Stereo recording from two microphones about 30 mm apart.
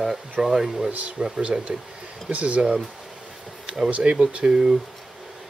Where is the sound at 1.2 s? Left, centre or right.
Right.